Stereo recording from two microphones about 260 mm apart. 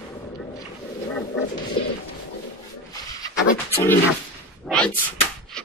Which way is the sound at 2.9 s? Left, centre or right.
Centre.